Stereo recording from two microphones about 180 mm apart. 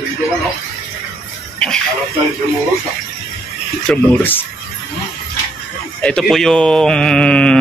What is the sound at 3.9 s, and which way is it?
Speech, 10° left (ahead or behind).